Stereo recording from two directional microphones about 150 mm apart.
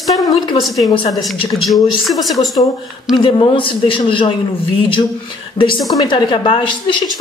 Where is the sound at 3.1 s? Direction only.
35° left (ahead or behind).